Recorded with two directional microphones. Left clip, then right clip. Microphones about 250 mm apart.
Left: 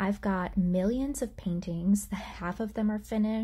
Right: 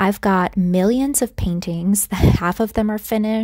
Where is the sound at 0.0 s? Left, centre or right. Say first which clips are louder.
Right 14 dB; right.